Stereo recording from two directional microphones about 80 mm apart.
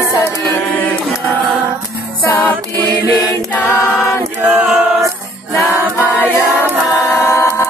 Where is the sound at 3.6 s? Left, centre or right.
Left.